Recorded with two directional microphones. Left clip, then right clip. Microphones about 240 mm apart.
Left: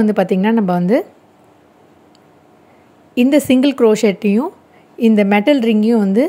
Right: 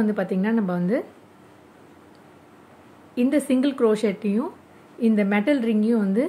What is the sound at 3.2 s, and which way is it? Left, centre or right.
A woman's voice, left.